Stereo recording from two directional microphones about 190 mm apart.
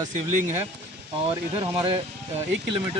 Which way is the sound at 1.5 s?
30° right (ahead or behind).